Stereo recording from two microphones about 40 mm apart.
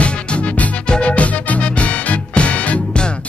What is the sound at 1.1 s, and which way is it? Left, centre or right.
Music, left.